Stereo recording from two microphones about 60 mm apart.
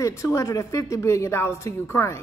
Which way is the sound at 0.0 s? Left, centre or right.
Left.